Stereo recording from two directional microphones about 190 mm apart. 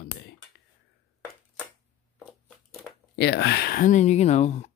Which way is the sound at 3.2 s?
65° left (ahead or behind).